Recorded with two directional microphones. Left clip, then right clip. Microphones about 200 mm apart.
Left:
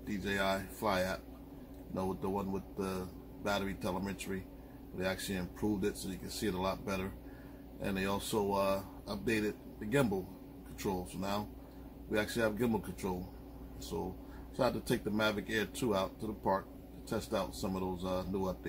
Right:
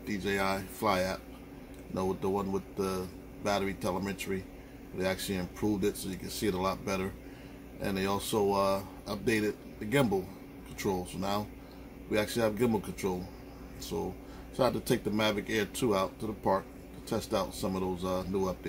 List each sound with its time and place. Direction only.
0.2 s speech: 5° right (ahead or behind)